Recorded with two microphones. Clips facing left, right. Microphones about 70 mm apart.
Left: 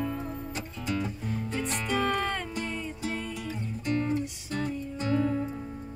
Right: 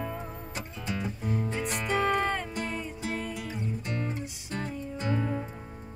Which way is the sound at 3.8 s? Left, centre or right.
Centre.